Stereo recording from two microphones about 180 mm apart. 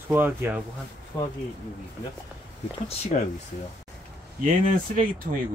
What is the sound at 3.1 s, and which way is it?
Speech, 40° left (ahead or behind).